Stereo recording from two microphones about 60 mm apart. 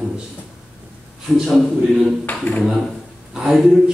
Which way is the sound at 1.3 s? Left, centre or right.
Centre.